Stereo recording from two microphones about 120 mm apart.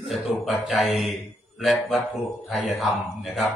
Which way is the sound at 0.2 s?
Centre (ahead or behind).